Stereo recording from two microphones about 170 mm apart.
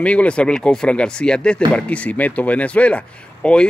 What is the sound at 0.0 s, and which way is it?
Speech, 5° left (ahead or behind).